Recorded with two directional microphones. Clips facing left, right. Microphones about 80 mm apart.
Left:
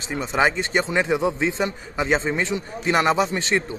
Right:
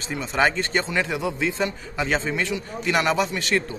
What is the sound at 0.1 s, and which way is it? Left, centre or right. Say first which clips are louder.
Speech: left 1 dB; left.